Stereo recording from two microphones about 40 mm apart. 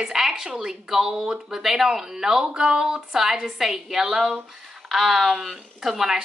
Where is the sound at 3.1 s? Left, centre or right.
Centre.